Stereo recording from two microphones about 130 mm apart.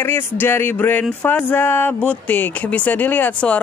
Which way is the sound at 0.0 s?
15° left (ahead or behind).